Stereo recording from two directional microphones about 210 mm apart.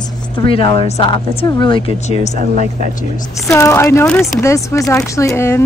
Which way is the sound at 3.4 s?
15° left (ahead or behind).